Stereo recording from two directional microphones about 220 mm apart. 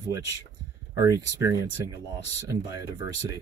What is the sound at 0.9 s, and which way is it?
Speech, 15° right (ahead or behind).